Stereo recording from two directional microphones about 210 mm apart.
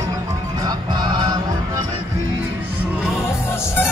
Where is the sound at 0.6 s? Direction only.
20° right (ahead or behind).